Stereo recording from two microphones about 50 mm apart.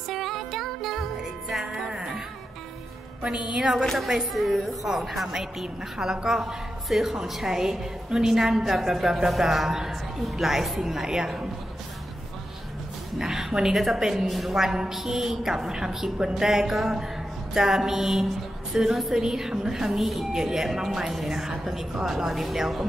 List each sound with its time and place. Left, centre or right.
0.1 s music: centre
3.2 s a woman's voice: centre
3.8 s a woman's voice: centre
13.2 s a woman's voice: centre